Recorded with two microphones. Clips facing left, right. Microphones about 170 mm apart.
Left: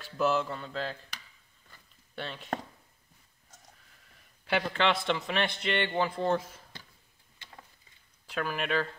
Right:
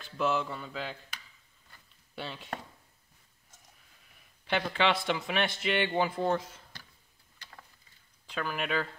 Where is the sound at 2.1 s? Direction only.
5° right (ahead or behind).